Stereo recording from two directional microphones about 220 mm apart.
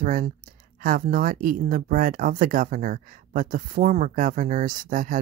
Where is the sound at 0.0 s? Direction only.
40° right (ahead or behind).